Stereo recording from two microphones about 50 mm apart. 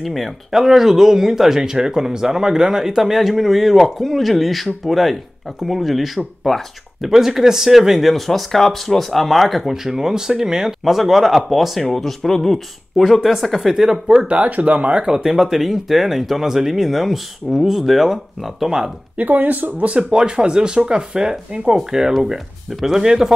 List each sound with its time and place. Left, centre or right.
0.0 s speech: centre
14.2 s speech: right
15.0 s speech: centre
19.1 s speech: right
19.9 s speech: centre